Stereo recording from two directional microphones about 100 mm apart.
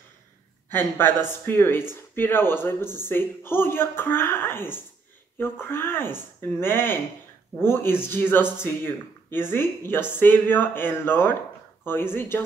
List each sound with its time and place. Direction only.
0.7 s a woman's voice: 20° left (ahead or behind)